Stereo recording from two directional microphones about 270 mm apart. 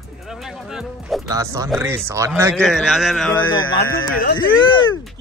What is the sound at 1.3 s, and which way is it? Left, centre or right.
Speech, centre.